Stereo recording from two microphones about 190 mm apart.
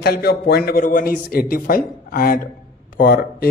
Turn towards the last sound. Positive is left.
turn(degrees=55)  # may be behind; listen again after turning